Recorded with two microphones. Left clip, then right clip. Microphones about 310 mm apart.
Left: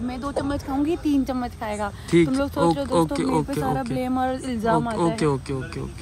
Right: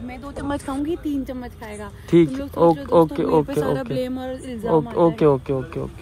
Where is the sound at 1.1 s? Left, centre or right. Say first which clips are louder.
Left 4 dB; centre.